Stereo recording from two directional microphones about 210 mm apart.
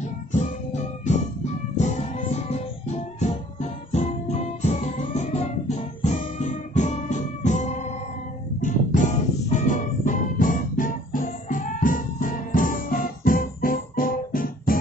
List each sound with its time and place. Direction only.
0.3 s music: 35° left (ahead or behind)